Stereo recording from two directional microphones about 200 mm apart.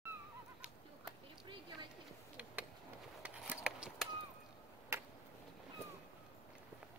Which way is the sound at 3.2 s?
5° right (ahead or behind).